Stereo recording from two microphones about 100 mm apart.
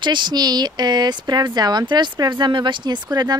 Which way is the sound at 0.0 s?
50° right (ahead or behind).